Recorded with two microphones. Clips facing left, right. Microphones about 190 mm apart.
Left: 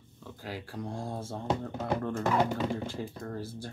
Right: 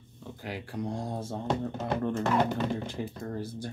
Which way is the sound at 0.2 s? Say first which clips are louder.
Right 2 dB; 20° right (ahead or behind).